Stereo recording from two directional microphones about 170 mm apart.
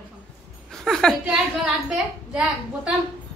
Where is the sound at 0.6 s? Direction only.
Centre (ahead or behind).